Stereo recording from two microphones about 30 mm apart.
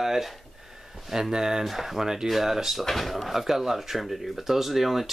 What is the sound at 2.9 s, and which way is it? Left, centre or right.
Speech, centre.